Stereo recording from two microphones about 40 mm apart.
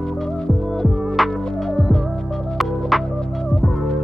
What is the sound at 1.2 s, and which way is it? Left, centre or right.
Music, centre.